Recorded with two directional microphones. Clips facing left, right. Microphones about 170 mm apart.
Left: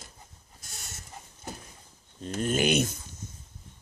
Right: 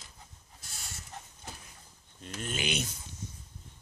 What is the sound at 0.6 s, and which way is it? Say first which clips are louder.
Goat: left 1 dB; 45° left (ahead or behind).